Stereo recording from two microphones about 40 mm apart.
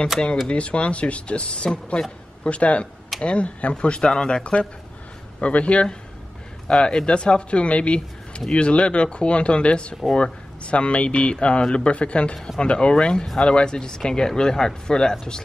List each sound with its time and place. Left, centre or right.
0.5 s speech: left